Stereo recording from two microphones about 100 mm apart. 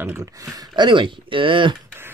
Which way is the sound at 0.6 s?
50° right (ahead or behind).